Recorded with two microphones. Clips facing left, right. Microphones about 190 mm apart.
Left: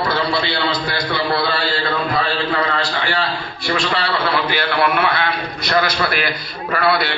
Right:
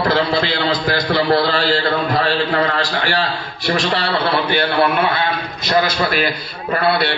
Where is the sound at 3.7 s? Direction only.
35° right (ahead or behind).